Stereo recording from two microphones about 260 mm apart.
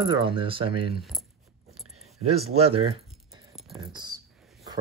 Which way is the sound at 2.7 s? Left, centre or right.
Right.